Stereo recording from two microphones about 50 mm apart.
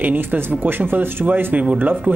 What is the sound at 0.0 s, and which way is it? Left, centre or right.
Speech, right.